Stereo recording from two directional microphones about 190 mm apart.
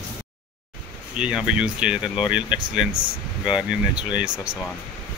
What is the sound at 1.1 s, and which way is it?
Speech, 5° right (ahead or behind).